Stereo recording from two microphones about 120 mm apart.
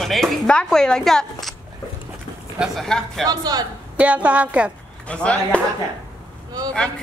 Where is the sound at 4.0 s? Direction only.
10° right (ahead or behind).